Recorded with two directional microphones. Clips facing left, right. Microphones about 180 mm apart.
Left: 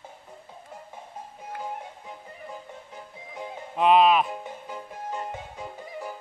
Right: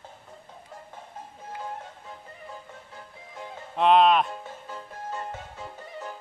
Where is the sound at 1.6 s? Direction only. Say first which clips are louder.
Left 2 dB; 15° left (ahead or behind).